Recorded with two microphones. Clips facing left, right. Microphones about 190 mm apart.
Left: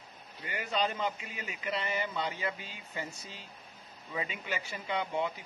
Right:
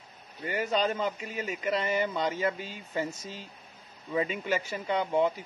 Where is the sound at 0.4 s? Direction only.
40° right (ahead or behind).